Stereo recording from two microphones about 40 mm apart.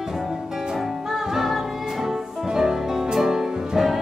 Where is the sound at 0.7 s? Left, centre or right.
Centre.